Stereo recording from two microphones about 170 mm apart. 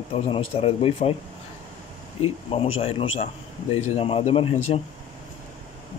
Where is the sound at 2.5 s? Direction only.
35° left (ahead or behind).